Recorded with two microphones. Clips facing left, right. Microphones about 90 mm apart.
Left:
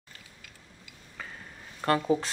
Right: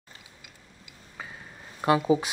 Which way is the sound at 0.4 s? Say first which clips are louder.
Even; 15° right (ahead or behind).